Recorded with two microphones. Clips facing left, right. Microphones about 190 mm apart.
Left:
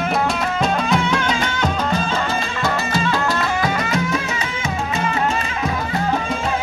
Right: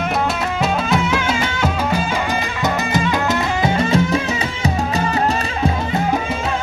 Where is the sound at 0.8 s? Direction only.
5° right (ahead or behind).